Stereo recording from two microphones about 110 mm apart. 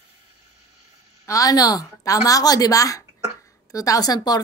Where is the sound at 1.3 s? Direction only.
35° left (ahead or behind).